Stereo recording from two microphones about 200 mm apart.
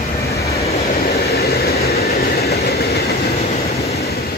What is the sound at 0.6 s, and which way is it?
Vehicle, 30° left (ahead or behind).